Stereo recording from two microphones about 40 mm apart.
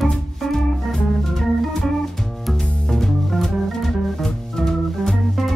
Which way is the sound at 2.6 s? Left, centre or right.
Centre.